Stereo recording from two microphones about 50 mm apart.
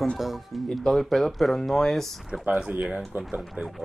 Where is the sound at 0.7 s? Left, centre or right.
Centre.